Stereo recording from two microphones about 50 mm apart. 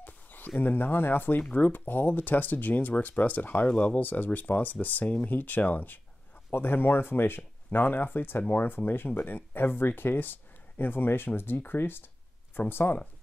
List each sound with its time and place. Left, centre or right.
0.0 s a sound: left
0.6 s speech: left
6.5 s speech: left